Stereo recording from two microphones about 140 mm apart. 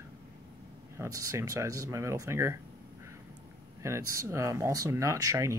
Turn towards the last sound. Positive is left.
turn(degrees=-20)  # may be behind; listen again after turning